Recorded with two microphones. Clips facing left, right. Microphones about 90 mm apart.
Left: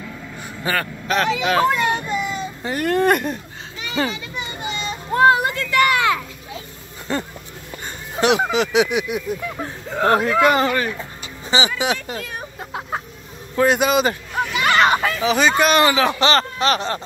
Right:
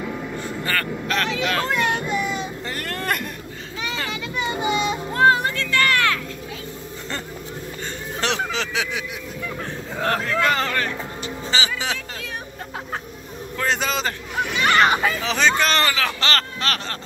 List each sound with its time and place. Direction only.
0.4 s speech: 15° left (ahead or behind)
2.6 s speech: 15° left (ahead or behind)
4.6 s speech: 10° right (ahead or behind)
5.1 s speech: 5° left (ahead or behind)
13.6 s speech: 15° left (ahead or behind)